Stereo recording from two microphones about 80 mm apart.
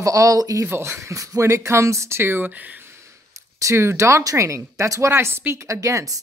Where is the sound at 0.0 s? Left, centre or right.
Right.